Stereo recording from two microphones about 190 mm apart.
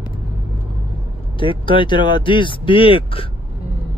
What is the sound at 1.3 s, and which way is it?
Speech, 25° left (ahead or behind).